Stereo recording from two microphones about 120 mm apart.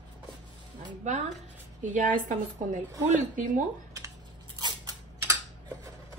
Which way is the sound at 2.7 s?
90° right.